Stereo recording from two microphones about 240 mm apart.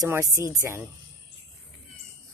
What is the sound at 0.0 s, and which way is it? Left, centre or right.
Speech, centre.